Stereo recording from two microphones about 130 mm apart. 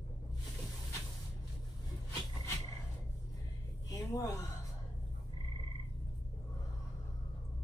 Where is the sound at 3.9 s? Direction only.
25° left (ahead or behind).